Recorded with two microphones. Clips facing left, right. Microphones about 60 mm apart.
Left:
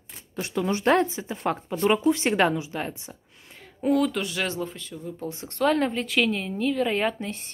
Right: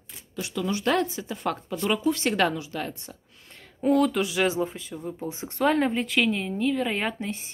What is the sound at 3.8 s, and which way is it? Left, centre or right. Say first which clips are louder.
Speech: right 1 dB; centre.